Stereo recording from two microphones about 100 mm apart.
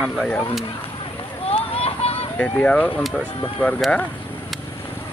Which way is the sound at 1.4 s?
75° left (ahead or behind).